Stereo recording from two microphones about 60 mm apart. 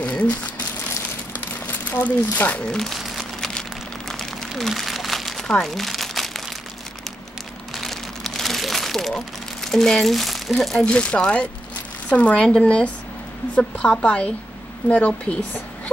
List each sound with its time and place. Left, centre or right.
0.0 s crumpling: left
1.9 s speech: left
2.6 s speech: centre
2.9 s crumpling: centre
7.7 s crumpling: centre
9.1 s speech: centre
10.9 s speech: centre